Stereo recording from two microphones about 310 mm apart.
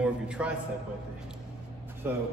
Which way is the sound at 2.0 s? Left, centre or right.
Centre.